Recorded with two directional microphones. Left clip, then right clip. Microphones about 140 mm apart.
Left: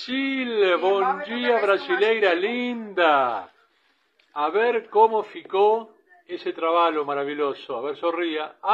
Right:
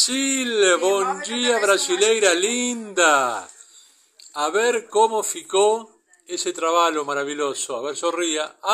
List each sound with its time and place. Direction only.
0.0 s speech: 35° right (ahead or behind)